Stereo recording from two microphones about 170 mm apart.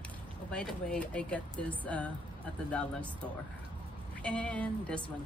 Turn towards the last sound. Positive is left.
turn(degrees=5)  # may be behind; listen again after turning